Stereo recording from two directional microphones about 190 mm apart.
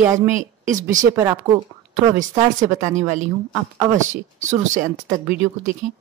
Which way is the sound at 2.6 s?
40° right (ahead or behind).